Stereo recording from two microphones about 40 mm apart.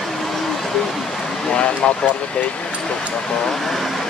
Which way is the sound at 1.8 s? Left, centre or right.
Left.